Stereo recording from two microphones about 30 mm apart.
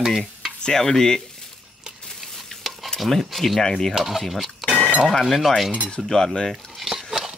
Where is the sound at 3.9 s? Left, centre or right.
Centre.